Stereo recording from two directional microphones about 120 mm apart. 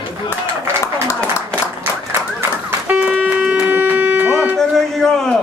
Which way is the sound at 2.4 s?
15° right (ahead or behind).